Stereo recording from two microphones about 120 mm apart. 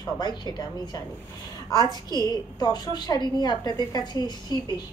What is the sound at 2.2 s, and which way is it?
A woman's voice, 35° left (ahead or behind).